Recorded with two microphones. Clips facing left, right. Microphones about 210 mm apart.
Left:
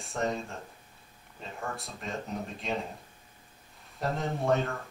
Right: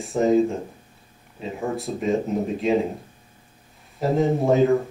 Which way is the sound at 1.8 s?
Centre (ahead or behind).